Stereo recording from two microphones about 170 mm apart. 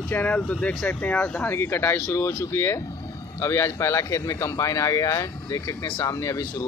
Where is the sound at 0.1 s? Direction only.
10° left (ahead or behind).